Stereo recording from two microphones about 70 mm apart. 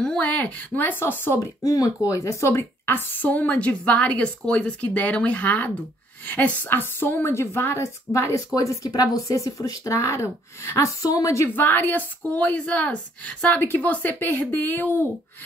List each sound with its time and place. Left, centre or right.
0.0 s speech: centre
0.4 s speech: left
1.4 s a woman's voice: left
8.5 s speech: left
11.4 s speech: left